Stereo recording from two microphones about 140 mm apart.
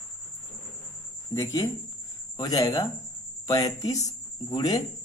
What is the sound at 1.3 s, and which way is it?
Speech, 20° left (ahead or behind).